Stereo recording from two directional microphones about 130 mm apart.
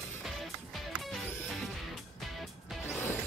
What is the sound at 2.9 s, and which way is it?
Music, 20° left (ahead or behind).